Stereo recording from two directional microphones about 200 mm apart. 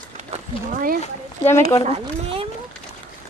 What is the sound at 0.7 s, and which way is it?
Speech, 45° right (ahead or behind).